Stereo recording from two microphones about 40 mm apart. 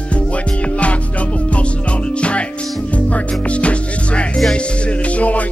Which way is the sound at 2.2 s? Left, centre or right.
Left.